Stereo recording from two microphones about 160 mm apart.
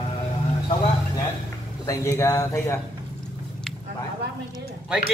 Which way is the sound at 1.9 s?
15° left (ahead or behind).